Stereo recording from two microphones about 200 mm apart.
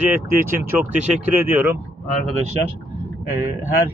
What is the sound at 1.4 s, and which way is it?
Speech, 10° right (ahead or behind).